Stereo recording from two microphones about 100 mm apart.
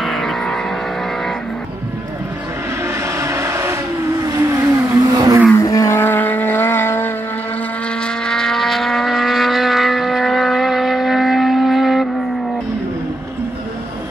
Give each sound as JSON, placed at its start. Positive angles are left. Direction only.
{"t": 0.0, "sound": "vehicle", "side_deg": 0}
{"t": 3.2, "sound": "vehicle", "side_deg": -30}
{"t": 5.5, "sound": "vehicle", "side_deg": 30}
{"t": 8.3, "sound": "vehicle", "side_deg": 5}